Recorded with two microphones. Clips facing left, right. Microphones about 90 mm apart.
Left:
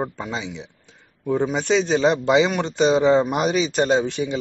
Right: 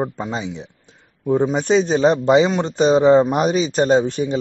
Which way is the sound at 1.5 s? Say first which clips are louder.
Right 3 dB; 40° right (ahead or behind).